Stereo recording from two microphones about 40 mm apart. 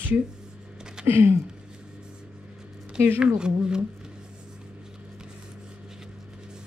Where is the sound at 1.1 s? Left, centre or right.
Right.